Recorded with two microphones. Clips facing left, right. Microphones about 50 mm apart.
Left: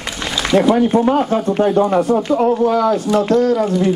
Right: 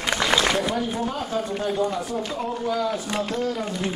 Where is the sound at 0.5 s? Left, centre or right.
Left.